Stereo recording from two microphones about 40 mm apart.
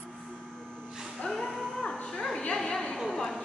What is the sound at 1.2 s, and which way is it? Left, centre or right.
Music, centre.